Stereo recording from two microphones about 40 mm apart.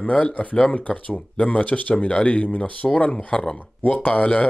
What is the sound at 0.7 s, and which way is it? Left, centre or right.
Speech, left.